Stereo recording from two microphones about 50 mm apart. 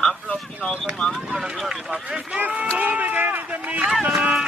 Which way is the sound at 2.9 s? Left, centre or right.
Right.